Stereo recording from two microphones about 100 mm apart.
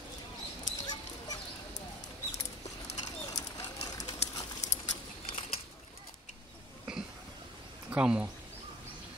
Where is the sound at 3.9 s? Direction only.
40° left (ahead or behind).